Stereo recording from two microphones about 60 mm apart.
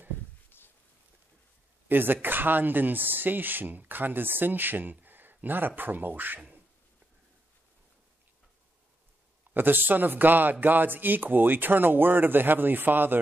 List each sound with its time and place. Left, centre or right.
0.5 s a sound: left
1.9 s speech: right
9.5 s speech: right